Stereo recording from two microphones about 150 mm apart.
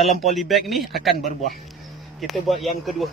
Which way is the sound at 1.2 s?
55° left (ahead or behind).